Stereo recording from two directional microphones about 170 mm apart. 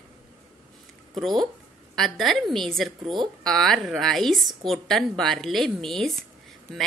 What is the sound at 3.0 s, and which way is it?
Speech, 25° right (ahead or behind).